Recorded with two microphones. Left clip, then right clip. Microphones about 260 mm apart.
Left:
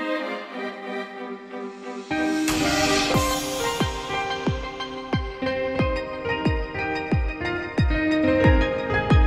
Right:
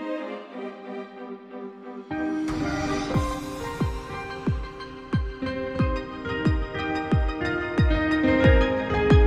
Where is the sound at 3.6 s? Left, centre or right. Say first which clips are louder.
Left 7 dB; right.